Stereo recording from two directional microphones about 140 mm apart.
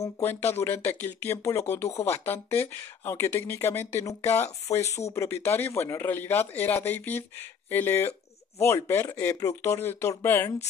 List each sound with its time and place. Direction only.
0.0 s a man's voice: 15° left (ahead or behind)